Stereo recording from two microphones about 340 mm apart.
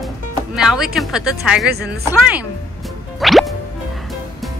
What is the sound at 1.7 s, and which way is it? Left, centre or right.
Speech, right.